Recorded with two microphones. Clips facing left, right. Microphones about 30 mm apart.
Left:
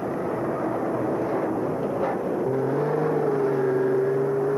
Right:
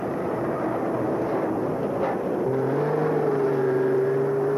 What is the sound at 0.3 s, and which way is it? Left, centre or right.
Vehicle, centre.